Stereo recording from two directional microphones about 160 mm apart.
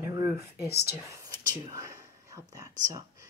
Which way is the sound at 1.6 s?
20° right (ahead or behind).